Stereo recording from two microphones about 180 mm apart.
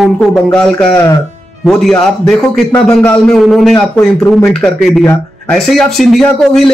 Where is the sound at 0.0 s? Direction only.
Centre (ahead or behind).